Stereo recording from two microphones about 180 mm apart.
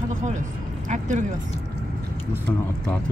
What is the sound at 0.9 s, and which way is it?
Speech, 45° right (ahead or behind).